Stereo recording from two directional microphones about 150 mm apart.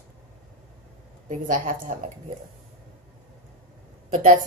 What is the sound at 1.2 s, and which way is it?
Speech, 60° right (ahead or behind).